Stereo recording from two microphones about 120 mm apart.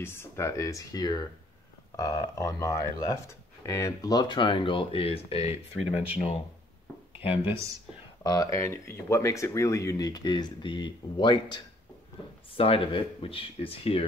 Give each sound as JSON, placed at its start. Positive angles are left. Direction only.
{"t": 0.0, "sound": "speech", "side_deg": 20}
{"t": 7.2, "sound": "speech", "side_deg": 50}
{"t": 8.2, "sound": "speech", "side_deg": 30}